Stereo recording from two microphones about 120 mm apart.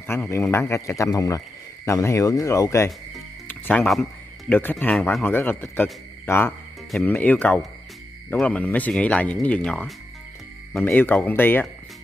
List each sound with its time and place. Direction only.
0.0 s speech: 20° left (ahead or behind)
3.4 s music: 15° left (ahead or behind)
3.8 s speech: centre (ahead or behind)
4.5 s speech: 15° left (ahead or behind)